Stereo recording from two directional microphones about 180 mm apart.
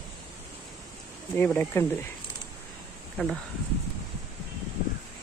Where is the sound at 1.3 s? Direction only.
10° left (ahead or behind).